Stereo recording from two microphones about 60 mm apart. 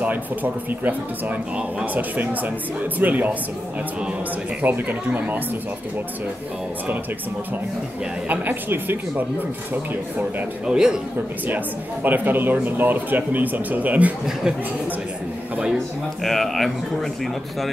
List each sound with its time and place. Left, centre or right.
0.0 s speech: right
4.6 s speech: right
8.3 s speech: right
10.7 s a man's voice: centre
11.4 s speech: right
16.2 s speech: centre